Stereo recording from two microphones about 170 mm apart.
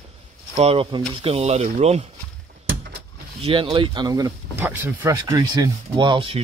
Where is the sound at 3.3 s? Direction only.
35° right (ahead or behind).